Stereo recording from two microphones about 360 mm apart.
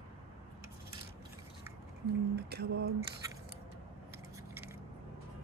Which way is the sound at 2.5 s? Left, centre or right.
Right.